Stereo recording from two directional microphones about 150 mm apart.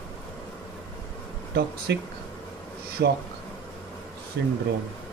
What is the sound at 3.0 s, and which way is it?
Speech, 90° right.